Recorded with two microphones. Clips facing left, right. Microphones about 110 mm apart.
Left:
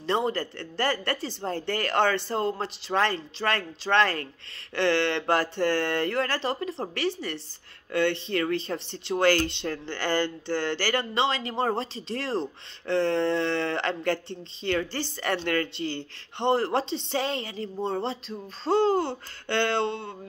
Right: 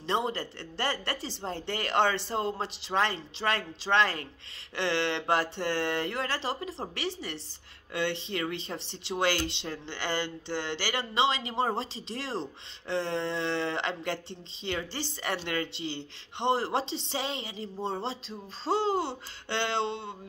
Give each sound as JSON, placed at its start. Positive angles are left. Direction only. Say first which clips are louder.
{"t": 0.0, "sound": "speech", "louder": "left 4 dB", "side_deg": -20}